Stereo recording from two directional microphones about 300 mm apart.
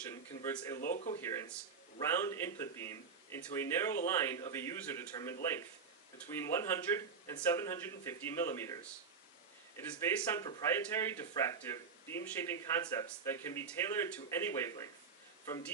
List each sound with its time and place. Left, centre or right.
0.1 s speech: centre
0.7 s speech: left
1.2 s speech: centre
9.8 s speech: centre